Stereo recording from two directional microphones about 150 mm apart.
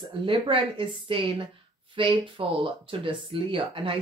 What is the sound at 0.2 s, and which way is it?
Speech, 35° right (ahead or behind).